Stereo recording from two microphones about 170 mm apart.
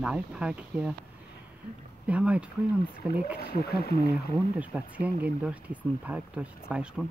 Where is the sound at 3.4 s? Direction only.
65° left (ahead or behind).